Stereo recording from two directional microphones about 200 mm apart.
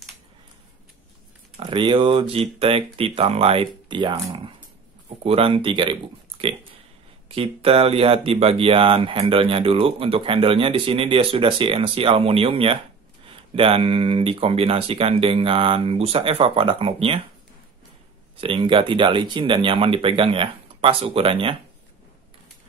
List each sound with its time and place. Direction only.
1.6 s speech: 25° right (ahead or behind)
18.4 s speech: 25° right (ahead or behind)